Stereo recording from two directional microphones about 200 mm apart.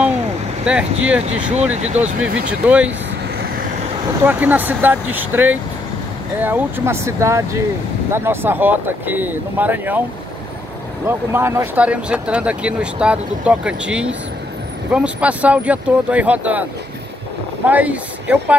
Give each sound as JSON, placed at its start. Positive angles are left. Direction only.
{"t": 0.7, "sound": "speech", "side_deg": -5}
{"t": 1.5, "sound": "speech", "side_deg": -35}
{"t": 2.6, "sound": "speech", "side_deg": -5}
{"t": 4.2, "sound": "speech", "side_deg": -10}
{"t": 11.1, "sound": "speech", "side_deg": -10}
{"t": 17.6, "sound": "speech", "side_deg": -10}